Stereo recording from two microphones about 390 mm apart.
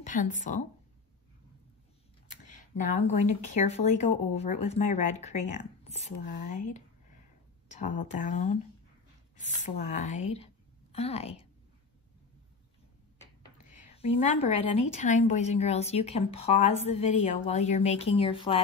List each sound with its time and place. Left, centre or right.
0.0 s speech: centre
2.8 s a woman's voice: centre
7.6 s a sound: centre
8.1 s a woman's voice: centre
13.9 s a woman's voice: centre